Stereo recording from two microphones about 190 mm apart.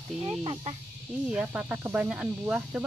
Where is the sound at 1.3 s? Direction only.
5° right (ahead or behind).